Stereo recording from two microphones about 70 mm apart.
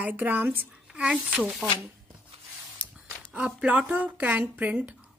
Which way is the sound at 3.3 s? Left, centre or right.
Centre.